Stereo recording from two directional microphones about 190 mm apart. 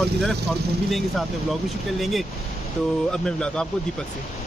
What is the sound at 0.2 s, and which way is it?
Speech, centre (ahead or behind).